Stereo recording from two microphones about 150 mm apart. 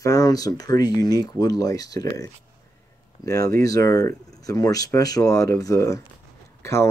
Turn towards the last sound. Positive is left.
turn(degrees=20)  # may be behind; listen again after turning